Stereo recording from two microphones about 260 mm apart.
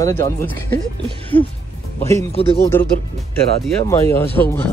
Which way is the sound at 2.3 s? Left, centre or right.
Left.